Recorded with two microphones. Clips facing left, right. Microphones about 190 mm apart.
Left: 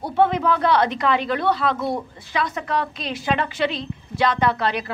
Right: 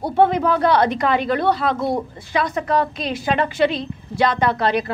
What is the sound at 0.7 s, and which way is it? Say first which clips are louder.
A woman's voice: right 2 dB; 45° right (ahead or behind).